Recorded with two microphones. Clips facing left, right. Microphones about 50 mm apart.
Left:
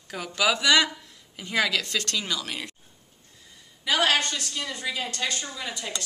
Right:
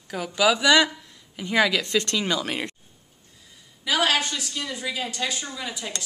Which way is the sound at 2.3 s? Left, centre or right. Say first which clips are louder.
Right 5 dB; right.